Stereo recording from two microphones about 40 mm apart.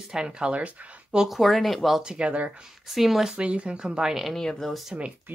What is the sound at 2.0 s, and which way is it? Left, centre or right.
Speech, right.